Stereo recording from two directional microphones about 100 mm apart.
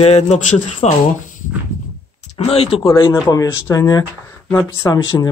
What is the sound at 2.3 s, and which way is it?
Speech, 85° left.